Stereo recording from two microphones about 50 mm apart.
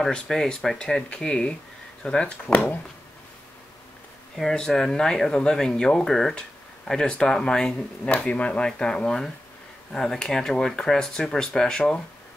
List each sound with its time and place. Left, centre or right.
0.3 s speech: centre
2.5 s speech: left
4.4 s speech: centre
8.1 s speech: left
8.6 s speech: centre